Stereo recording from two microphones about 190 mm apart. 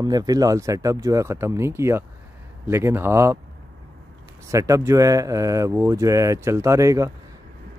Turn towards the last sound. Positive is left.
turn(degrees=-15)  # may be behind; listen again after turning